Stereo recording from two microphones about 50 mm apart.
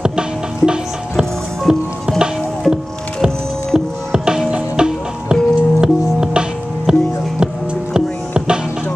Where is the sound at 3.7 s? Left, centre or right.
Centre.